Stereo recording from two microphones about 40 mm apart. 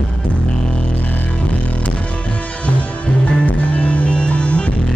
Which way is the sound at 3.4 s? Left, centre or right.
Left.